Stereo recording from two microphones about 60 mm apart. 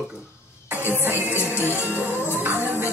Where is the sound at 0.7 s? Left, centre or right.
Right.